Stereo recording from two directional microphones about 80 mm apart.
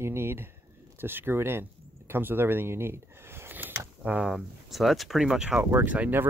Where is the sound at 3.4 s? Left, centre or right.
Right.